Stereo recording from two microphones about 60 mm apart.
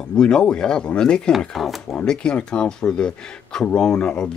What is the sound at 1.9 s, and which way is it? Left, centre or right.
Speech, centre.